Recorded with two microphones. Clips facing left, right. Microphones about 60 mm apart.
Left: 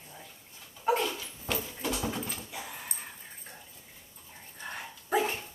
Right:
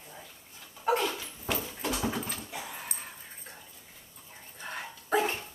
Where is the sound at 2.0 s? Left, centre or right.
Right.